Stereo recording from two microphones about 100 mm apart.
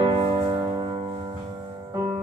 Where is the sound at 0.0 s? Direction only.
55° right (ahead or behind).